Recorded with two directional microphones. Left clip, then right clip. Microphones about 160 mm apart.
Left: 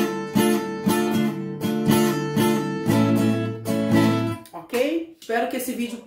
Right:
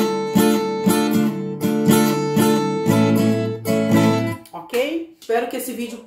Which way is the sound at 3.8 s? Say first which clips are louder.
Right 1 dB; 10° right (ahead or behind).